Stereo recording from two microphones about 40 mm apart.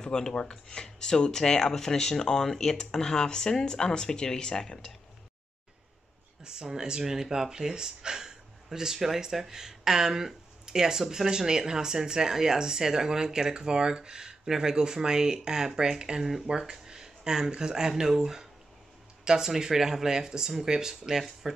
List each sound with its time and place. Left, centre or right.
0.0 s speech: centre
6.4 s speech: centre